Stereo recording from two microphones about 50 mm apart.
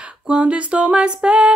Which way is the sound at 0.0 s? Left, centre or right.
Right.